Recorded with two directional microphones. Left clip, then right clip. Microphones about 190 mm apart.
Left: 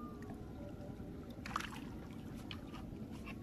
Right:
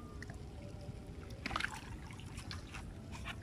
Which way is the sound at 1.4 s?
25° right (ahead or behind).